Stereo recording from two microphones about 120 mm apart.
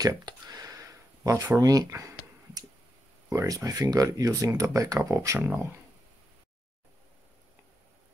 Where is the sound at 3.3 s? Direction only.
25° right (ahead or behind).